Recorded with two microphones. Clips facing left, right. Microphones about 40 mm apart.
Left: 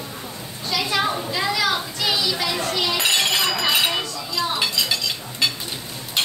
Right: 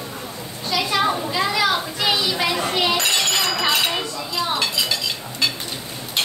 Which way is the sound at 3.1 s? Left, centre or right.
Centre.